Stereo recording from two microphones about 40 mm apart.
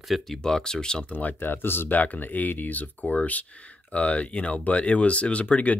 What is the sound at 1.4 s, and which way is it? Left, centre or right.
Speech, left.